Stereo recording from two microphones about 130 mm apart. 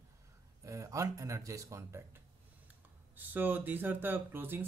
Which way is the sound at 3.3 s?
15° right (ahead or behind).